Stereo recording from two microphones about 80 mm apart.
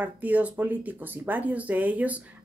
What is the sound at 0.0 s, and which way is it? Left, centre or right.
Speech, centre.